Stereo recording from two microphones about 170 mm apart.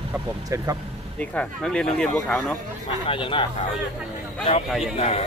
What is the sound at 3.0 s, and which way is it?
Speech, 30° left (ahead or behind).